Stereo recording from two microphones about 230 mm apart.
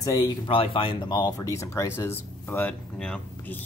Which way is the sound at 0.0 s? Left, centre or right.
Centre.